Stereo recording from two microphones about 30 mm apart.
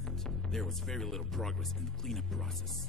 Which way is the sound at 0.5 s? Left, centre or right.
Centre.